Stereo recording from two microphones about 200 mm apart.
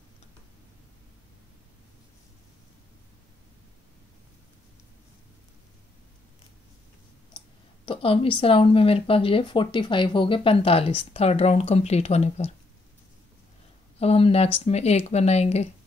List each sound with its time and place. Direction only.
7.3 s speech: 25° left (ahead or behind)
13.9 s speech: 30° left (ahead or behind)